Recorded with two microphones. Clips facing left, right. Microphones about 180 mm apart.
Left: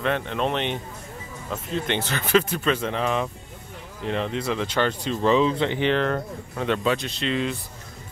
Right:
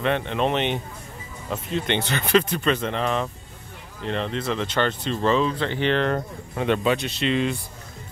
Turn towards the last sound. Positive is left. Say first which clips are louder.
# right 3 dB
turn(degrees=0)  # may be behind; listen again after turning